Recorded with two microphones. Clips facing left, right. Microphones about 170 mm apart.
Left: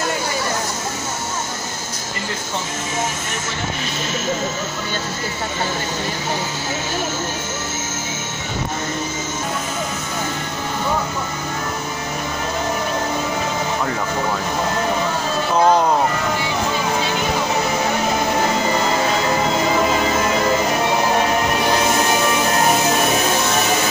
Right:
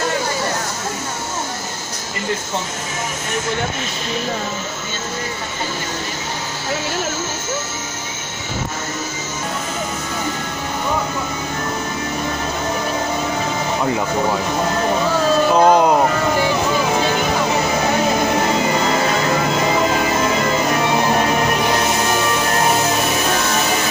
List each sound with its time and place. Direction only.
15.5 s speech: 15° right (ahead or behind)